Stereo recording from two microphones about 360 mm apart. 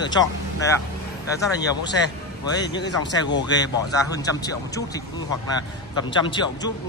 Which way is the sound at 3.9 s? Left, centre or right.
Centre.